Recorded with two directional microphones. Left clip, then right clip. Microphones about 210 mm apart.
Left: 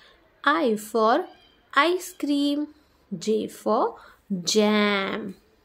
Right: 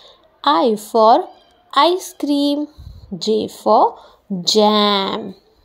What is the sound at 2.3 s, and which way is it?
Speech, 15° left (ahead or behind).